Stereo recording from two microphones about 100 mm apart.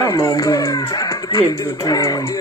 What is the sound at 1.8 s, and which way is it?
Music, 35° left (ahead or behind).